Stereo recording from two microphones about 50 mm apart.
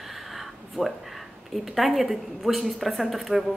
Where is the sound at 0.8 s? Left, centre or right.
Centre.